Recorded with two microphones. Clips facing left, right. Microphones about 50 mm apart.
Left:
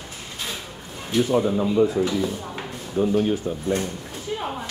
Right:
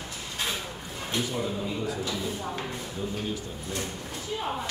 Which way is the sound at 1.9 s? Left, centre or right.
Left.